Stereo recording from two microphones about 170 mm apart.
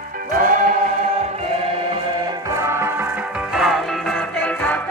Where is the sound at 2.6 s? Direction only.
15° right (ahead or behind).